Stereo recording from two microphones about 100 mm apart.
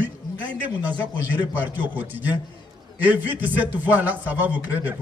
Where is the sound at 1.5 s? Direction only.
15° right (ahead or behind).